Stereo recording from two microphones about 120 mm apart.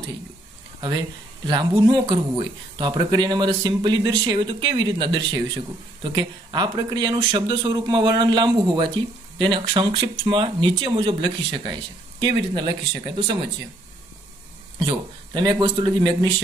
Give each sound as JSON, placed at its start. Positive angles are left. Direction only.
{"t": 0.7, "sound": "speech", "side_deg": -40}
{"t": 14.9, "sound": "speech", "side_deg": -35}